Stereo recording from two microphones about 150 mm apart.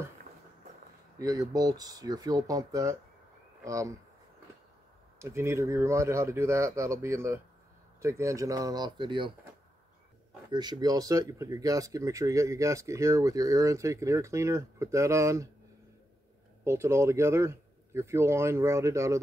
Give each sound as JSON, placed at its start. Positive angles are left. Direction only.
{"t": 1.1, "sound": "speech", "side_deg": -20}
{"t": 5.2, "sound": "speech", "side_deg": -20}
{"t": 10.5, "sound": "speech", "side_deg": -30}
{"t": 16.6, "sound": "speech", "side_deg": -15}